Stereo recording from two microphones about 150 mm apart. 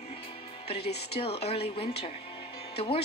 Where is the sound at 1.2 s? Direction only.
40° left (ahead or behind).